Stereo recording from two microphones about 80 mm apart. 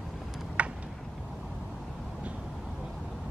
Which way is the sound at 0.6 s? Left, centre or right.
Centre.